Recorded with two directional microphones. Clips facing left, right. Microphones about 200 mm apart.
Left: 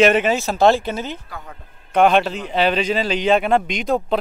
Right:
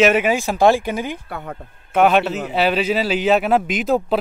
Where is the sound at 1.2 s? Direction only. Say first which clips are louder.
Right 6 dB; 60° right (ahead or behind).